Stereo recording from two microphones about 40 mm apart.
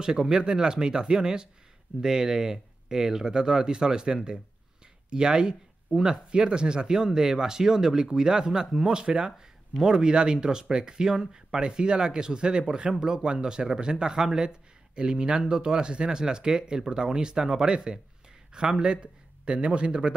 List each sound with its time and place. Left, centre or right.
0.0 s speech: centre
5.9 s speech: centre
6.3 s speech: right